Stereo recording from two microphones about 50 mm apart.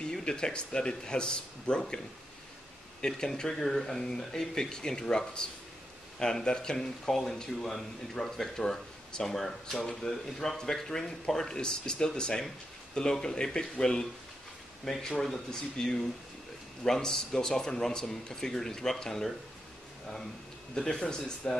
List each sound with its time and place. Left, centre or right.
0.0 s speech: centre
3.0 s speech: centre
20.7 s speech: centre